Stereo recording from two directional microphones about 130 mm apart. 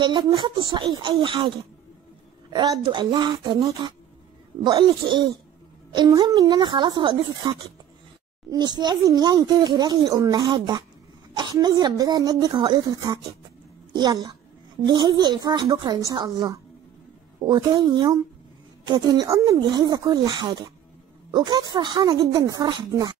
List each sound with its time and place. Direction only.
0.0 s speech: 35° right (ahead or behind)
2.5 s speech: 30° right (ahead or behind)